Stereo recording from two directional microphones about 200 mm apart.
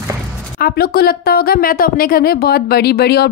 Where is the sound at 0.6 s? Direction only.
50° left (ahead or behind).